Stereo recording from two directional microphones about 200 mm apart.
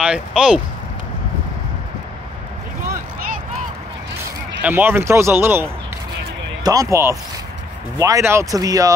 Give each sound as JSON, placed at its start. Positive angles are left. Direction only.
{"t": 0.0, "sound": "speech", "side_deg": -5}
{"t": 4.6, "sound": "speech", "side_deg": -10}